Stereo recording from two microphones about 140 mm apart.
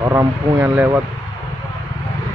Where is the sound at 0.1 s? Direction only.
15° right (ahead or behind).